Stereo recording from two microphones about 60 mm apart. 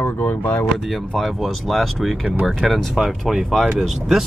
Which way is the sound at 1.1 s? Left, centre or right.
Centre.